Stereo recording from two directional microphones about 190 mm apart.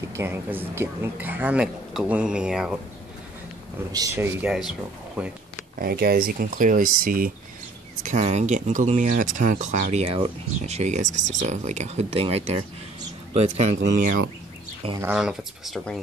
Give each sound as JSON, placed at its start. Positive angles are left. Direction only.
{"t": 0.1, "sound": "speech", "side_deg": -10}
{"t": 3.9, "sound": "speech", "side_deg": -15}
{"t": 5.8, "sound": "speech", "side_deg": -55}
{"t": 15.0, "sound": "speech", "side_deg": -5}